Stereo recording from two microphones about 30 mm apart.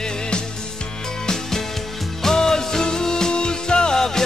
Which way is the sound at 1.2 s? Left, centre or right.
Centre.